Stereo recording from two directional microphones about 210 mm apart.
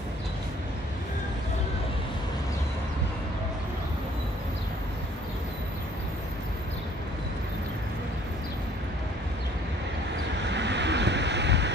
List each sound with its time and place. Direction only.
10.4 s waves: 55° right (ahead or behind)